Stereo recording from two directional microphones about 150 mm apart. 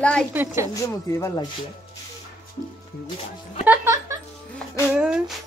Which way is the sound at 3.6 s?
20° right (ahead or behind).